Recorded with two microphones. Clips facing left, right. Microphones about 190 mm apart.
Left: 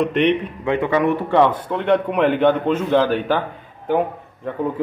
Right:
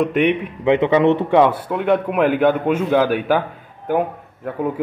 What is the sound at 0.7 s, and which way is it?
Speech, 20° right (ahead or behind).